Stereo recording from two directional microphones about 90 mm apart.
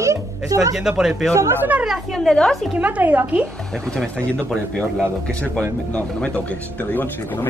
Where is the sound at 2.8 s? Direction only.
15° right (ahead or behind).